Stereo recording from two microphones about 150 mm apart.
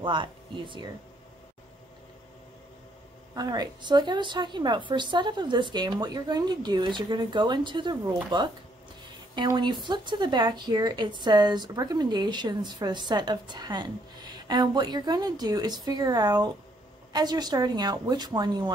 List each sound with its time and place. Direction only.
0.0 s a woman's voice: 35° right (ahead or behind)
3.3 s a woman's voice: 25° right (ahead or behind)